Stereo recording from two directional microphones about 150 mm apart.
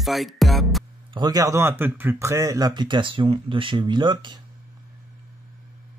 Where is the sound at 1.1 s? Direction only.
25° right (ahead or behind).